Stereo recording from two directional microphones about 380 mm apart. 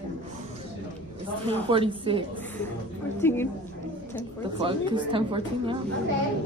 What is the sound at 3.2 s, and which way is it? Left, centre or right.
Speech, centre.